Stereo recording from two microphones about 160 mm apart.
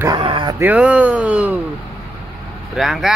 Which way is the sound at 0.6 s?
10° right (ahead or behind).